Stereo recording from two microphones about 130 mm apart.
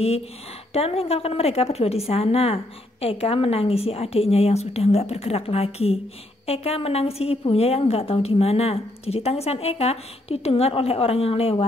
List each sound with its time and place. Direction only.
0.7 s a woman's voice: 50° left (ahead or behind)